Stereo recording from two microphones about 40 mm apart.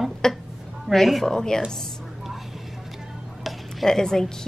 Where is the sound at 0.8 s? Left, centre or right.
Centre.